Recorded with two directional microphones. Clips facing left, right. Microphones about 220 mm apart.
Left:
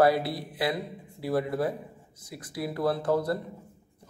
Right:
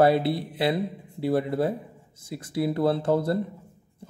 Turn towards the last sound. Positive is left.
turn(degrees=-25)  # may be behind; listen again after turning